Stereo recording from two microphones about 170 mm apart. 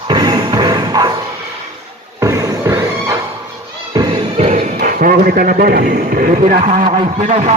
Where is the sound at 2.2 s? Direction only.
20° right (ahead or behind).